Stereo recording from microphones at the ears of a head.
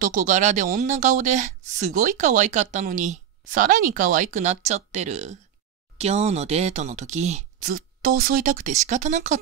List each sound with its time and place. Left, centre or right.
0.0 s speech: right